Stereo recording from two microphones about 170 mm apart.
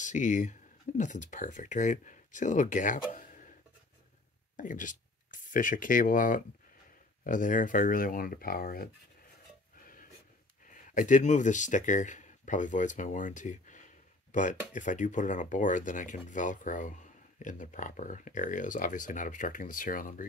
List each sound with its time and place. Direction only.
0.0 s speech: 45° left (ahead or behind)
4.6 s speech: 50° left (ahead or behind)
10.7 s speech: 50° left (ahead or behind)